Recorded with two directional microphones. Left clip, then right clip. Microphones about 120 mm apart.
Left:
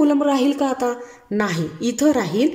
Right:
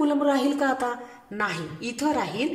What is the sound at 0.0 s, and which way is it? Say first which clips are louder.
Speech: left 5 dB; 30° left (ahead or behind).